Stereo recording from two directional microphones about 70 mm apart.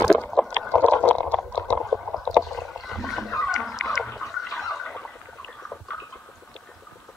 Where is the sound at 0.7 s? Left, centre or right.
Left.